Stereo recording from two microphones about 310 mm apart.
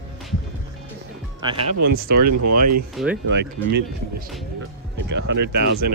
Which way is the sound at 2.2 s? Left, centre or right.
Right.